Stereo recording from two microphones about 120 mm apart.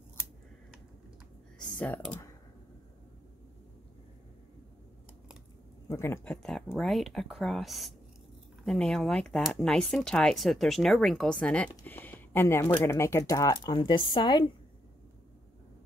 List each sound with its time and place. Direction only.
1.6 s speech: 10° left (ahead or behind)
5.9 s speech: 20° left (ahead or behind)
6.3 s speech: 5° left (ahead or behind)
11.8 s a sound: 15° left (ahead or behind)
12.8 s speech: 20° left (ahead or behind); by 14.4 s 40° left (ahead or behind)